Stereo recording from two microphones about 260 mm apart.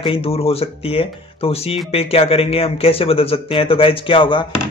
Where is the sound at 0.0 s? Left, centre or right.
Left.